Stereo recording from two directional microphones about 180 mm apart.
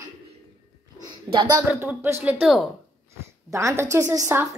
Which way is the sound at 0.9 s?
25° right (ahead or behind).